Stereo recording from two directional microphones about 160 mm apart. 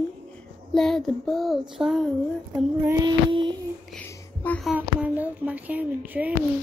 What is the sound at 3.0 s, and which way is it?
Child singing, 30° right (ahead or behind).